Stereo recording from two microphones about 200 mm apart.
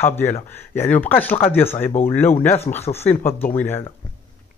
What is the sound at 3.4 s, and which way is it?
Speech, 10° left (ahead or behind).